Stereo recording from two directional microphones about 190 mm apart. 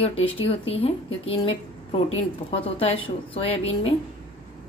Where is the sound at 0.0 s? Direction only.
30° left (ahead or behind).